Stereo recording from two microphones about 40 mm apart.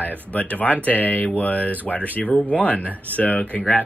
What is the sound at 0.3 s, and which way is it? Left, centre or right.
Speech, left.